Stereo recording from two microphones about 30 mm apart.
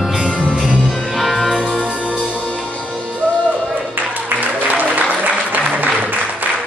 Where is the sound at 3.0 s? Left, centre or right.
Right.